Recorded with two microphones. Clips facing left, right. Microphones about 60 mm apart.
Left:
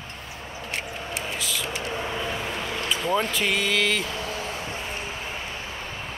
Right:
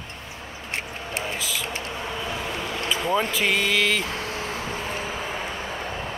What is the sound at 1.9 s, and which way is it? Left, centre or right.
Vehicle, centre.